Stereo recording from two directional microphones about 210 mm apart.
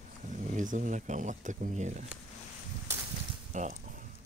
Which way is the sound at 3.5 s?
35° right (ahead or behind).